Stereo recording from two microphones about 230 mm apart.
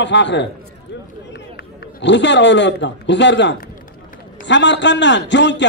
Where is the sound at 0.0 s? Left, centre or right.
Left.